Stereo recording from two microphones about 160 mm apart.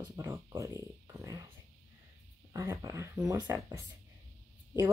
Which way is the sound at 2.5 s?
20° right (ahead or behind).